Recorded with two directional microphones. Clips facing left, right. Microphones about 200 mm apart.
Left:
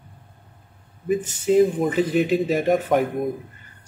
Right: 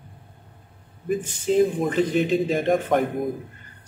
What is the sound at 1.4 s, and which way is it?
Speech, 5° left (ahead or behind).